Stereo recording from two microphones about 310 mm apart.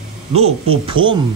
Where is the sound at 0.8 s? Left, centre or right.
Centre.